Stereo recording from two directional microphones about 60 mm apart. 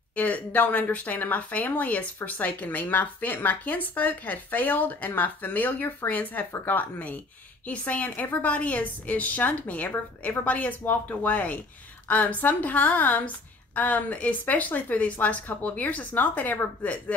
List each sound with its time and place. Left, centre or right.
0.1 s speech: left